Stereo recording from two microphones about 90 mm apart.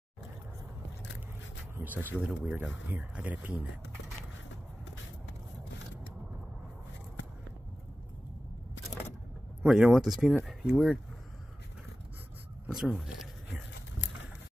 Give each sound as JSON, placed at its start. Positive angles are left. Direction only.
{"t": 1.8, "sound": "speech", "side_deg": -25}
{"t": 9.7, "sound": "speech", "side_deg": -5}
{"t": 12.6, "sound": "a sound", "side_deg": 0}